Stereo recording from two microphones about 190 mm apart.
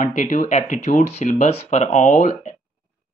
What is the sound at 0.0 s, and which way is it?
Speech, 40° left (ahead or behind).